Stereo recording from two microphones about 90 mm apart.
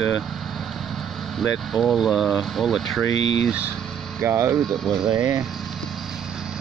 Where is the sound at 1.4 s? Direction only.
Centre (ahead or behind).